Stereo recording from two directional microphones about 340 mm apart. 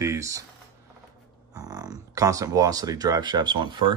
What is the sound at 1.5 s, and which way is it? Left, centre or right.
Speech, centre.